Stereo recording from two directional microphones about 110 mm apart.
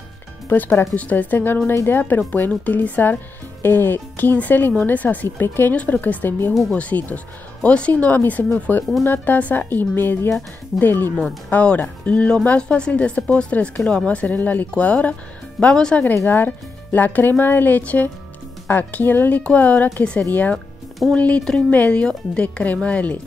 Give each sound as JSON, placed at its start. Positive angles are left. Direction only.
{"t": 0.5, "sound": "speech", "side_deg": 15}
{"t": 6.5, "sound": "speech", "side_deg": 0}
{"t": 6.8, "sound": "speech", "side_deg": 15}